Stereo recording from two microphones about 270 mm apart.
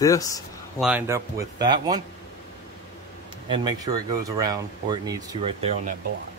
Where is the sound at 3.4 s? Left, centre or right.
Centre.